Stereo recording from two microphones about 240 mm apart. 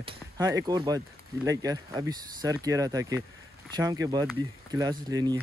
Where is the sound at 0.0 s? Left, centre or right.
Centre.